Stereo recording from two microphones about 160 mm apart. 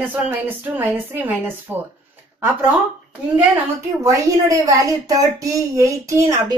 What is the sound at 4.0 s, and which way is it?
A woman's voice, 20° right (ahead or behind).